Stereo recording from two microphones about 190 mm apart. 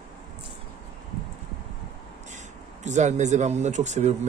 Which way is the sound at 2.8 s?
40° right (ahead or behind).